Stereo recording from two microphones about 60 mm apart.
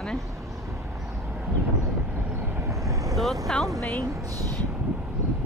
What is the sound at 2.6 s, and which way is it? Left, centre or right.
Vehicle, right.